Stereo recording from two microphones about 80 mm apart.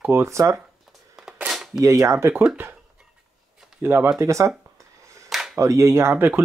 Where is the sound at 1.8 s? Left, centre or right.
Right.